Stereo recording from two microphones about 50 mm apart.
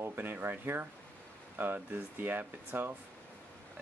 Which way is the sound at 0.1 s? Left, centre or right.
Right.